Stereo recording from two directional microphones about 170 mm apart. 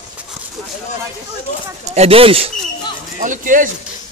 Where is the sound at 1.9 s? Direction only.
35° right (ahead or behind).